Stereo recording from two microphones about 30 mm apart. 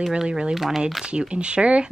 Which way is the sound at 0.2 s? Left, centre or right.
Right.